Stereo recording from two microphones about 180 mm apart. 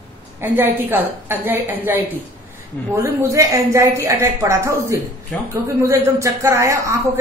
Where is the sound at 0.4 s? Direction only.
10° right (ahead or behind).